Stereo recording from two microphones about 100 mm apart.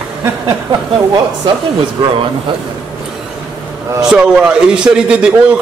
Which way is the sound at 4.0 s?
5° right (ahead or behind).